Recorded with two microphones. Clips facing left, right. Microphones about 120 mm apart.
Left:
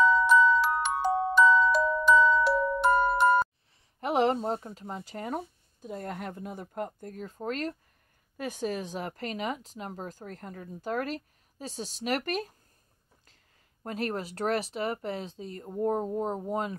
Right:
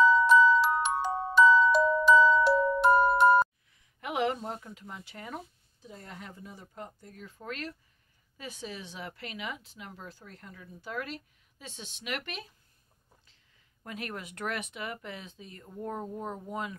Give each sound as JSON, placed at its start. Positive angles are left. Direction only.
{"t": 0.0, "sound": "glockenspiel", "side_deg": 0}
{"t": 4.0, "sound": "speech", "side_deg": 35}
{"t": 13.8, "sound": "speech", "side_deg": 35}